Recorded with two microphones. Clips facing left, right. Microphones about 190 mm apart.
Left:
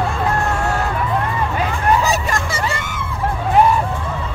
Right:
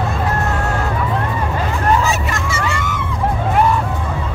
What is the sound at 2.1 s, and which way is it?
Hubbub, 35° left (ahead or behind).